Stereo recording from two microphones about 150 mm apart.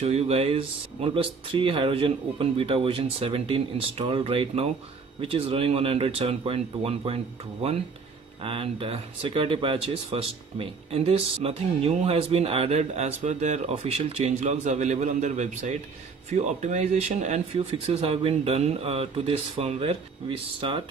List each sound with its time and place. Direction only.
0.0 s speech: 45° right (ahead or behind)
8.4 s speech: 40° right (ahead or behind)